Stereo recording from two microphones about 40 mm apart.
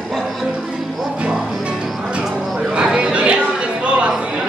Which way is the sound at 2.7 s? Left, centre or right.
Right.